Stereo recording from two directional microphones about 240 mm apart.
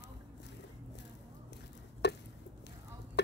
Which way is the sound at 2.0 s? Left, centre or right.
Left.